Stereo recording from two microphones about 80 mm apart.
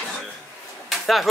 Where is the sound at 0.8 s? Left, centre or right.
Centre.